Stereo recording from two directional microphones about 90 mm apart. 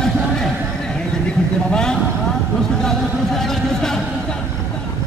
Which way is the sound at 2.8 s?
5° left (ahead or behind).